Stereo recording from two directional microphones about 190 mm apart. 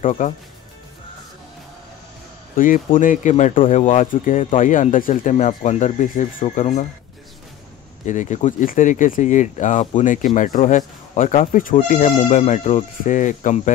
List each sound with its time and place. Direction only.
0.2 s speech: 45° left (ahead or behind)
2.5 s speech: 45° left (ahead or behind)
8.1 s speech: 40° left (ahead or behind)